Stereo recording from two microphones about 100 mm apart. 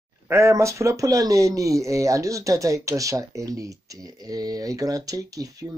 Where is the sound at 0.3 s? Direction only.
30° right (ahead or behind).